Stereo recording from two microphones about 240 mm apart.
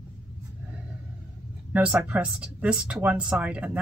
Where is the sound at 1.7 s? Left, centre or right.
Centre.